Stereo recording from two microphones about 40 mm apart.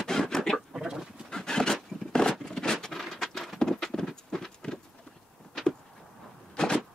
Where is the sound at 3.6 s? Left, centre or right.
Centre.